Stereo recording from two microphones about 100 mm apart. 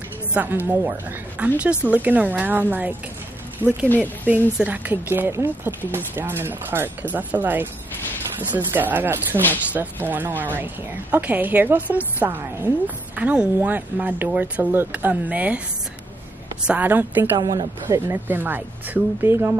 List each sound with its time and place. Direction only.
0.3 s a woman's voice: 20° right (ahead or behind)
3.9 s speech: 15° left (ahead or behind)
4.6 s a woman's voice: 15° right (ahead or behind)
16.6 s a woman's voice: 15° right (ahead or behind)
17.4 s speech: 45° right (ahead or behind)
17.8 s speech: 25° right (ahead or behind)